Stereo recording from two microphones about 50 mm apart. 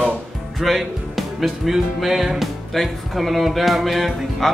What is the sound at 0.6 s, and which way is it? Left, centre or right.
Speech, centre.